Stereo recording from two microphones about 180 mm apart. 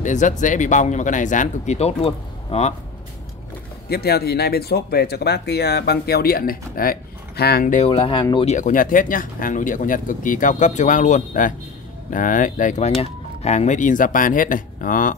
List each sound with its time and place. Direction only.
0.0 s speech: 45° left (ahead or behind)
3.9 s speech: 60° left (ahead or behind); by 8.5 s 30° left (ahead or behind)
8.5 s speech: 45° left (ahead or behind)